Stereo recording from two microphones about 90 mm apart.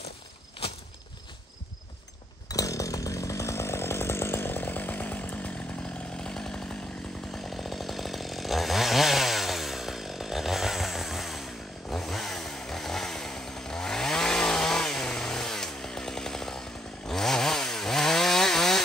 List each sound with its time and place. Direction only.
2.4 s chainsaw: 40° left (ahead or behind); by 5.5 s 20° left (ahead or behind)
6.1 s chainsaw: 5° left (ahead or behind)